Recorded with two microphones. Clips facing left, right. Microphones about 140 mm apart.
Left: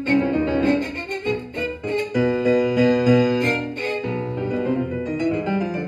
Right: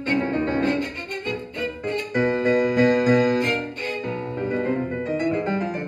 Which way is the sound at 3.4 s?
50° left (ahead or behind).